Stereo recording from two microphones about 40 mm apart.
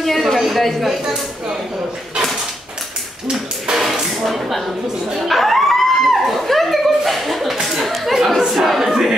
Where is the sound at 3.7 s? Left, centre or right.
Right.